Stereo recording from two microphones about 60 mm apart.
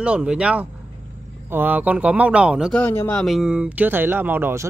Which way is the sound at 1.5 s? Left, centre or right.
Right.